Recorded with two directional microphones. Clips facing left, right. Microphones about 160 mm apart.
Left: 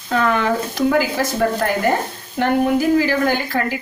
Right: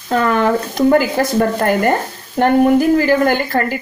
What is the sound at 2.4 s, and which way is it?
A woman's voice, 50° right (ahead or behind).